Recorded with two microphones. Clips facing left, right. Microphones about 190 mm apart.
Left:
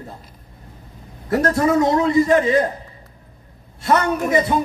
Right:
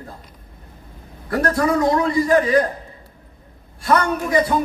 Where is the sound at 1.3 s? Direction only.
25° left (ahead or behind).